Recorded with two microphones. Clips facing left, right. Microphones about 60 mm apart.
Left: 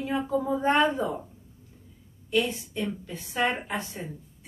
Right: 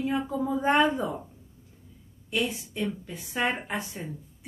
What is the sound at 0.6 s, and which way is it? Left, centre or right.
Speech, centre.